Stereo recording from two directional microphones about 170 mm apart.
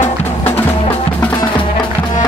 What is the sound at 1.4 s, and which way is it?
Music, 25° left (ahead or behind).